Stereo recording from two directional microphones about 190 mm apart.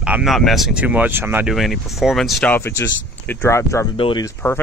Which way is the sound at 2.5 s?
10° left (ahead or behind).